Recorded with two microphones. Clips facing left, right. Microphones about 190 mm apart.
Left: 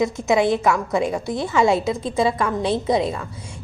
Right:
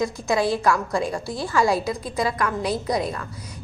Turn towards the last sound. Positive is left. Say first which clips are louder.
# left 2 dB
turn(degrees=25)  # may be behind; listen again after turning